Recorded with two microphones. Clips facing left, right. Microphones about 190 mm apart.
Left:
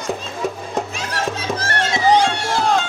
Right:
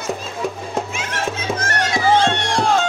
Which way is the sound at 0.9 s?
35° left (ahead or behind).